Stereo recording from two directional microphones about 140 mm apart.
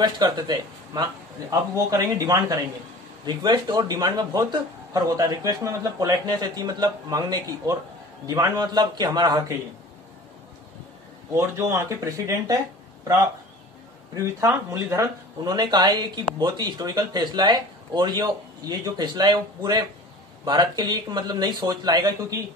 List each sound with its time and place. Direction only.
0.0 s speech: 30° right (ahead or behind)
11.3 s speech: 20° right (ahead or behind)
14.1 s speech: 20° right (ahead or behind)